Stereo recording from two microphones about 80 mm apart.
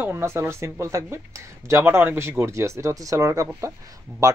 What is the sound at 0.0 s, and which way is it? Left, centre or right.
Speech, right.